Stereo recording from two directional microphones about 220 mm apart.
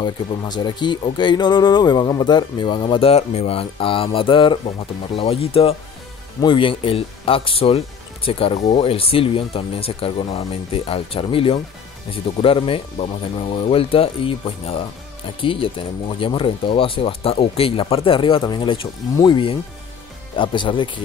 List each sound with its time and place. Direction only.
0.0 s speech: 20° left (ahead or behind)